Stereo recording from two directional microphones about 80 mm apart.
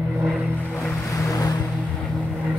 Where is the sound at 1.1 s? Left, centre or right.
Left.